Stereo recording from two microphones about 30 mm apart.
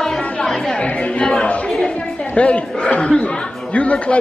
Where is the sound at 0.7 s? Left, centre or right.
Left.